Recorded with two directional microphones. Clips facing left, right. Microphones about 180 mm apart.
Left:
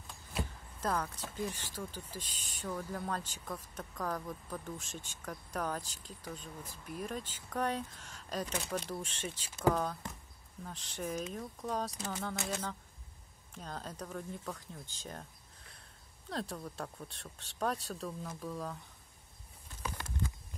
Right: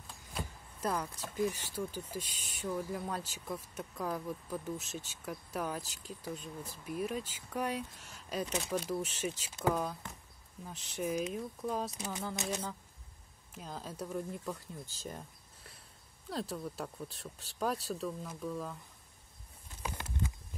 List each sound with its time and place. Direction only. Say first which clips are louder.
0.7 s speech: even; 10° right (ahead or behind)
16.3 s speech: right 2 dB; 5° right (ahead or behind)
19.8 s horse: right 1 dB; 20° right (ahead or behind)